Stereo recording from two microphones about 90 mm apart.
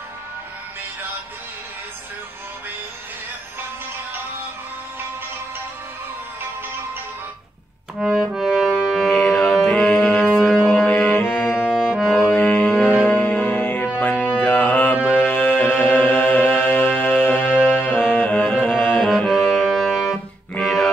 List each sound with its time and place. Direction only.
8.0 s music: 5° right (ahead or behind)
9.1 s music: 20° left (ahead or behind)
9.5 s music: centre (ahead or behind)
9.8 s music: 20° left (ahead or behind)
11.5 s accordion: 10° right (ahead or behind)
12.1 s music: 20° left (ahead or behind)
19.0 s music: centre (ahead or behind)